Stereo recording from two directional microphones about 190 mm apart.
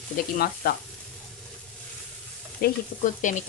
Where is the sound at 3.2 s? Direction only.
40° left (ahead or behind).